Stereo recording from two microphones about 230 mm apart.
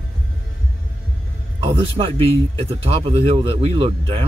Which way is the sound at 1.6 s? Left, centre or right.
Right.